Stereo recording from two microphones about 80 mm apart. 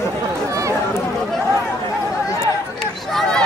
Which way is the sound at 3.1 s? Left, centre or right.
Centre.